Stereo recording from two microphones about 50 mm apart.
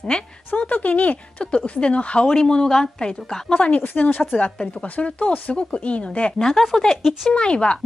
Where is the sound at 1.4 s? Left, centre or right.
Centre.